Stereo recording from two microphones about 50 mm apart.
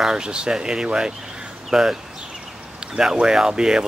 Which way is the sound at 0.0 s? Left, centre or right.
Centre.